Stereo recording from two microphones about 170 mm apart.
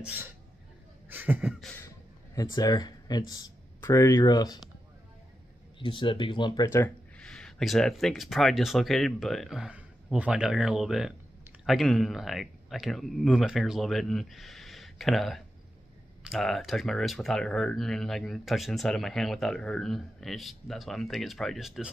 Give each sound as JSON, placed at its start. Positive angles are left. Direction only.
{"t": 0.0, "sound": "speech", "side_deg": -10}
{"t": 1.0, "sound": "a sound", "side_deg": -10}
{"t": 2.3, "sound": "speech", "side_deg": 20}
{"t": 5.8, "sound": "speech", "side_deg": 30}
{"t": 7.2, "sound": "speech", "side_deg": 5}